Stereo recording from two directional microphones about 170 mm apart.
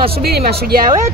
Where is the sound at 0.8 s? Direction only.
20° right (ahead or behind).